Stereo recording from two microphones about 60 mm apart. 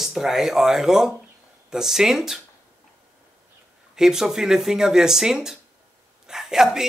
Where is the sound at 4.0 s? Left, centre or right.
Centre.